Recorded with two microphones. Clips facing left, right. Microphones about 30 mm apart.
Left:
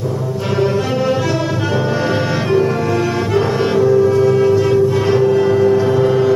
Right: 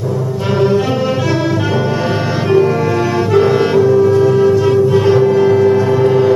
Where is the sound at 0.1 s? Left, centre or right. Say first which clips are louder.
Right 2 dB; centre.